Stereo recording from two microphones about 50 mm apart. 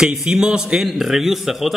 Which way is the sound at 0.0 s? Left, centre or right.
Centre.